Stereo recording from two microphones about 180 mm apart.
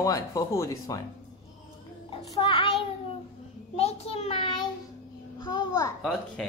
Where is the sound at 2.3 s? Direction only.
25° left (ahead or behind).